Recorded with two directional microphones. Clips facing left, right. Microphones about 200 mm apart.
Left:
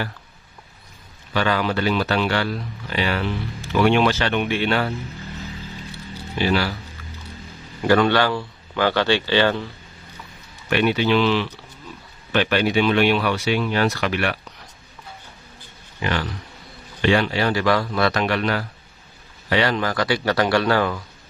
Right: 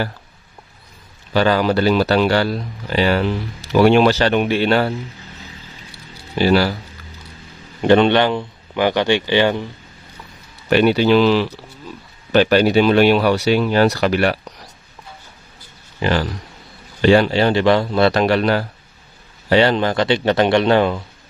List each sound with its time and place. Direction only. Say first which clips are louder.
1.3 s speech: right 6 dB; 35° right (ahead or behind)
6.3 s speech: right 6 dB; 35° right (ahead or behind)
7.8 s a man's voice: right 4 dB; 25° right (ahead or behind)
10.7 s speech: right 6 dB; 35° right (ahead or behind)
16.0 s speech: right 6 dB; 35° right (ahead or behind)